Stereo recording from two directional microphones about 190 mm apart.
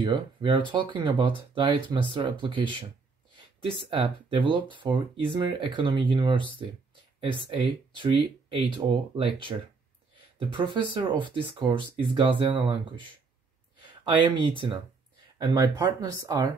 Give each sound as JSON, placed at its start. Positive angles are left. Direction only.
{"t": 0.0, "sound": "speech", "side_deg": -25}
{"t": 7.9, "sound": "speech", "side_deg": -25}